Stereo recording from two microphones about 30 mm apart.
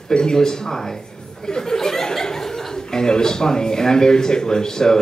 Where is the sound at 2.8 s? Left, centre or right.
Left.